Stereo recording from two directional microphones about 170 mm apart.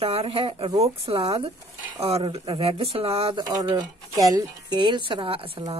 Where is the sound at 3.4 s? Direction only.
25° right (ahead or behind).